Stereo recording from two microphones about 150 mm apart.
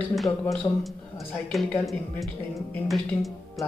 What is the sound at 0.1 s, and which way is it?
Speech, centre (ahead or behind).